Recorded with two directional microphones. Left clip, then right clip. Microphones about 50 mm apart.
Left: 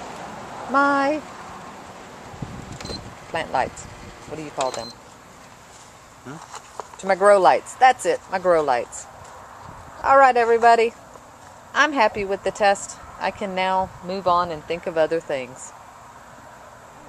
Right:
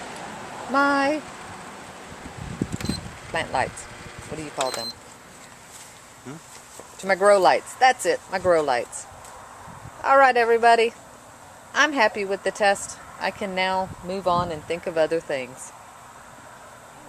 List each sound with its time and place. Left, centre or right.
0.0 s a sound: centre
0.7 s speech: centre
2.8 s mechanisms: centre
4.3 s speech: centre
7.2 s speech: centre
10.0 s speech: centre
14.0 s speech: centre
14.8 s speech: centre